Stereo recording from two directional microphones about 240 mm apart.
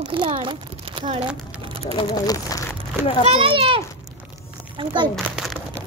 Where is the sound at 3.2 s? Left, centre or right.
Right.